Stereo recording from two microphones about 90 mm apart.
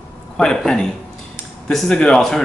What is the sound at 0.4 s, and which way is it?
Speech, 5° left (ahead or behind).